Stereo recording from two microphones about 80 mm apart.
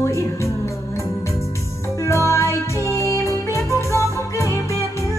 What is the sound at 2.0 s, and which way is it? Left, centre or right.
Music, left.